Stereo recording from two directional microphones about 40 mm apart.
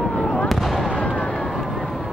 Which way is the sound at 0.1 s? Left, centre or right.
Centre.